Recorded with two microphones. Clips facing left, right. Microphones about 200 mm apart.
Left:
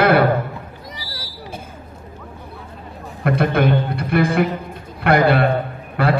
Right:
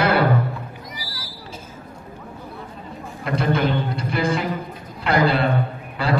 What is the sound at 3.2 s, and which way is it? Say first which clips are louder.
A man's voice: left 4 dB; 60° left (ahead or behind).